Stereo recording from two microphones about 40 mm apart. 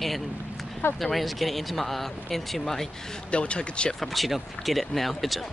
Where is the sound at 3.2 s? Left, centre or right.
Left.